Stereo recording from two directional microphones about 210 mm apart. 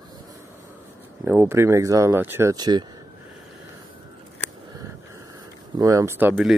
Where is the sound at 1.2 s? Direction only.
10° right (ahead or behind).